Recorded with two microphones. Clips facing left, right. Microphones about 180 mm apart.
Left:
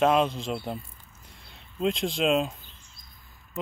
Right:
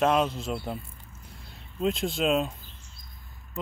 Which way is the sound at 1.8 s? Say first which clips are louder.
Left 1 dB; 5° right (ahead or behind).